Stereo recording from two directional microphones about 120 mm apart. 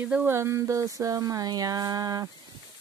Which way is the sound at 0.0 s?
15° right (ahead or behind).